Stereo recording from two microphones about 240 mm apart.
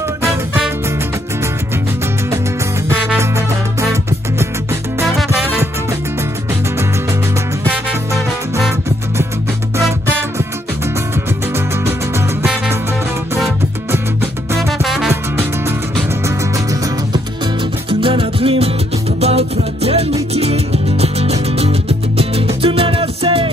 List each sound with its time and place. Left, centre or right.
3.1 s music: centre
5.0 s music: centre
7.7 s music: centre
14.7 s music: centre
17.8 s music: right